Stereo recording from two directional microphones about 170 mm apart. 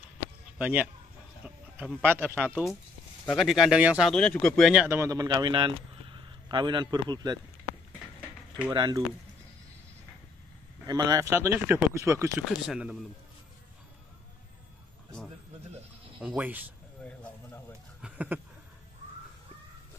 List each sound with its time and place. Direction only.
0.6 s speech: 10° right (ahead or behind)
3.3 s speech: centre (ahead or behind)
4.8 s speech: 15° right (ahead or behind)
8.7 s speech: 25° right (ahead or behind)
10.9 s speech: 25° right (ahead or behind)
12.4 s speech: 5° right (ahead or behind)
16.2 s speech: 10° right (ahead or behind)
18.0 s a sound: 10° right (ahead or behind)